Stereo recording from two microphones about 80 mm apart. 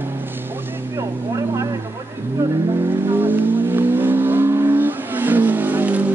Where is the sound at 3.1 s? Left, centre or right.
Right.